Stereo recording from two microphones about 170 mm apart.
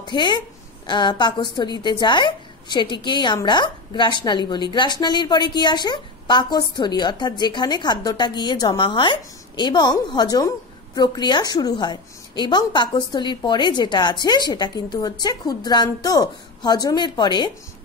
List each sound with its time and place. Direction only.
0.0 s a woman's voice: 25° left (ahead or behind)